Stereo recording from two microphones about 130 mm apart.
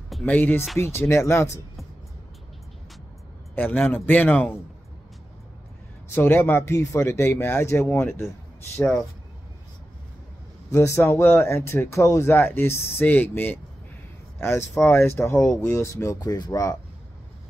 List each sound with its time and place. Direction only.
0.2 s speech: 15° left (ahead or behind)
3.5 s speech: 15° left (ahead or behind)
6.1 s speech: 15° left (ahead or behind)
8.7 s speech: 10° left (ahead or behind)
10.7 s speech: 20° left (ahead or behind)
14.7 s speech: 15° left (ahead or behind)